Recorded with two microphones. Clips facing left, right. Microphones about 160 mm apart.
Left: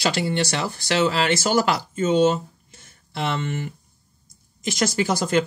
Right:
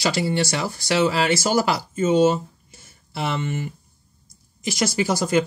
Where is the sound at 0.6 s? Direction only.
10° right (ahead or behind).